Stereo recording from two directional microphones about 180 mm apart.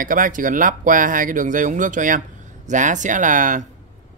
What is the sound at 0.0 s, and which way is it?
Speech, 50° right (ahead or behind).